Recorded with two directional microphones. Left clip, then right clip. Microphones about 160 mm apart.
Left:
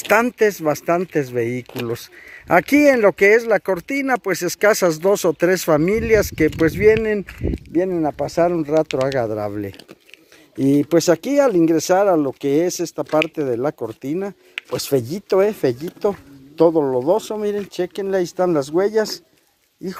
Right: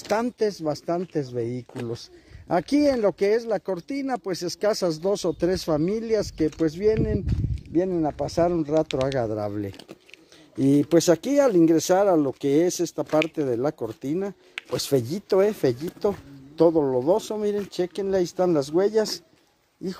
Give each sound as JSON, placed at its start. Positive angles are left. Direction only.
{"t": 0.1, "sound": "speech", "side_deg": 20}
{"t": 10.6, "sound": "speech", "side_deg": 5}